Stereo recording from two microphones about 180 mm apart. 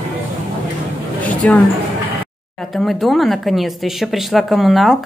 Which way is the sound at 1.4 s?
10° left (ahead or behind).